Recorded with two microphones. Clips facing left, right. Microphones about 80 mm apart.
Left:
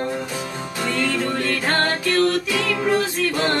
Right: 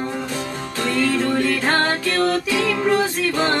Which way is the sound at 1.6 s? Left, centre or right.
Centre.